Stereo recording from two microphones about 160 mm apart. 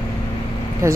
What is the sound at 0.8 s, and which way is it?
Speech, 15° right (ahead or behind).